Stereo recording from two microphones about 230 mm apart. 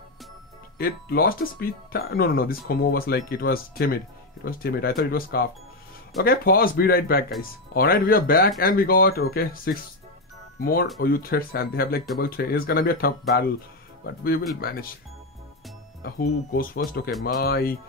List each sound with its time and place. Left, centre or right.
0.7 s speech: left
16.0 s speech: left